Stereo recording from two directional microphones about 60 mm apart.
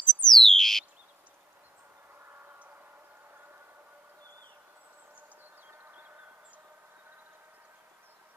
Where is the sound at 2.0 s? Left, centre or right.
Right.